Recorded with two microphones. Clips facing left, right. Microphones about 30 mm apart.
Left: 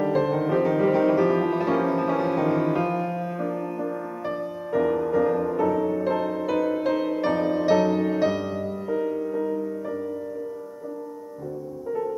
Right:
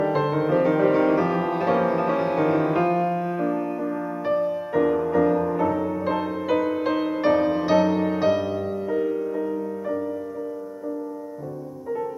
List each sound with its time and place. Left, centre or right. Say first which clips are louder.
0.0 s music: right 1 dB; centre